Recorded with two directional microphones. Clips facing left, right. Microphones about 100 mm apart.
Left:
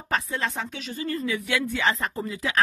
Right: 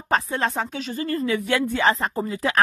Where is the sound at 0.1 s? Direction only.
40° right (ahead or behind).